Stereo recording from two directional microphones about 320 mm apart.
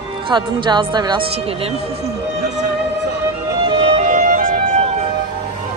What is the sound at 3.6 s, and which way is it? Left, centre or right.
Music, centre.